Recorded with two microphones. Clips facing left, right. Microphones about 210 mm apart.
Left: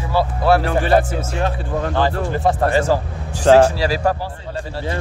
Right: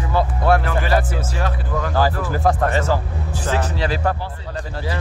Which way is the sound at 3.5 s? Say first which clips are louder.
Left 13 dB; 70° left (ahead or behind).